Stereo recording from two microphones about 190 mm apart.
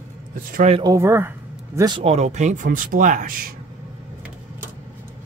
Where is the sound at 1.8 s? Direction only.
25° right (ahead or behind); by 3.5 s 50° right (ahead or behind).